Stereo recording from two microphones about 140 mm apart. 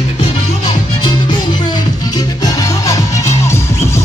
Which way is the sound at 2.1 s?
25° left (ahead or behind).